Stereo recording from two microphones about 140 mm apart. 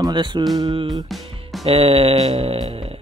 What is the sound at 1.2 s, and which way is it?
Music, 40° right (ahead or behind).